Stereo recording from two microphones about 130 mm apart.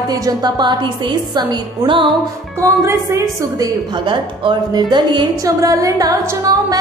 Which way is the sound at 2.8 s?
25° right (ahead or behind).